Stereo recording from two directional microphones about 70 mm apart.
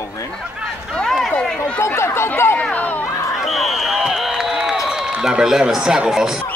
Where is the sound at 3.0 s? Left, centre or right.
Left.